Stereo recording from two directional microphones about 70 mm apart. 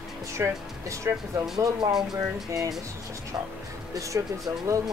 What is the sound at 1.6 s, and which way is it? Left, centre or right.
Speech, right.